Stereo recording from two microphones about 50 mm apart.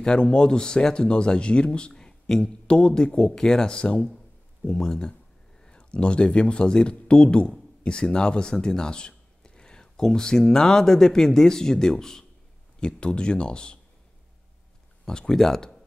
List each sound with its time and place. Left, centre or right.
0.0 s speech: centre
2.6 s speech: centre
15.0 s speech: centre